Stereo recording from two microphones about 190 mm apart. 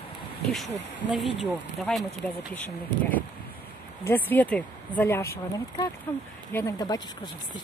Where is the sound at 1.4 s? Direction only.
Centre (ahead or behind).